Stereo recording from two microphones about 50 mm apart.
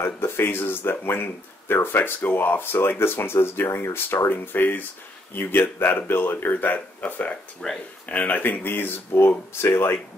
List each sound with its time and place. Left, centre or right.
0.0 s speech: left
4.3 s speech: left
7.6 s speech: centre
8.1 s speech: left